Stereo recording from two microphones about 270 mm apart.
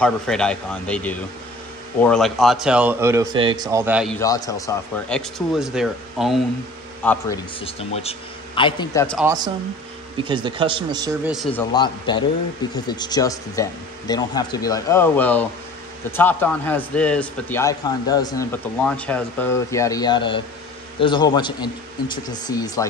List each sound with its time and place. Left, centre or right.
0.0 s speech: centre
4.2 s speech: centre
7.6 s a man's voice: left
9.2 s speech: centre
11.5 s speech: centre